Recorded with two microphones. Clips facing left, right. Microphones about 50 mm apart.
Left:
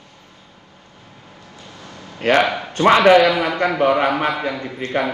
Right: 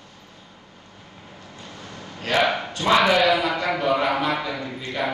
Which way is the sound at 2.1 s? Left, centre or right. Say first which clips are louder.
Left 5 dB; left.